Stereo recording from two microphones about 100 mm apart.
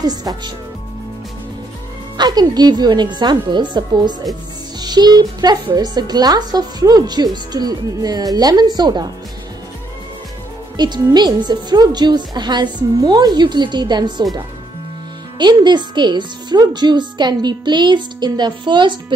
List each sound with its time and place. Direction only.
0.0 s speech: 40° right (ahead or behind)
2.1 s speech: 45° right (ahead or behind)
10.8 s speech: 45° right (ahead or behind)
15.3 s speech: 50° right (ahead or behind)